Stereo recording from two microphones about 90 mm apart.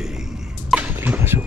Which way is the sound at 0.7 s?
20° right (ahead or behind).